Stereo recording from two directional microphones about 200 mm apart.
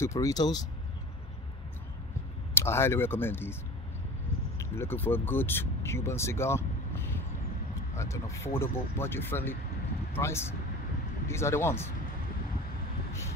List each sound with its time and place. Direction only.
0.0 s speech: 15° left (ahead or behind)
2.5 s speech: 10° left (ahead or behind)
4.6 s speech: 10° left (ahead or behind)